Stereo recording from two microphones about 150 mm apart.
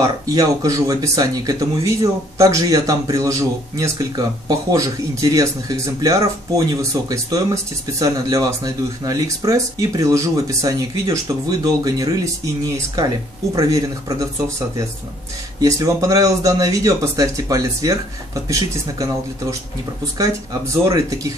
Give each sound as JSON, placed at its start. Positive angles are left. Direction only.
{"t": 0.0, "sound": "speech", "side_deg": -25}
{"t": 13.6, "sound": "speech", "side_deg": -25}
{"t": 15.6, "sound": "speech", "side_deg": -20}
{"t": 20.8, "sound": "speech", "side_deg": -20}